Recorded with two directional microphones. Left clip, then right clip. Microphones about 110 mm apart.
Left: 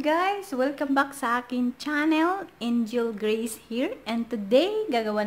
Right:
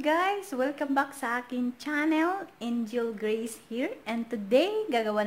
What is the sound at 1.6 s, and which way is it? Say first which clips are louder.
Speech: left 3 dB; 5° left (ahead or behind).